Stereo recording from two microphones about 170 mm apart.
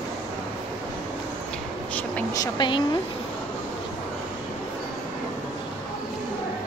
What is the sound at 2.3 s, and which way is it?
Speech, 25° left (ahead or behind).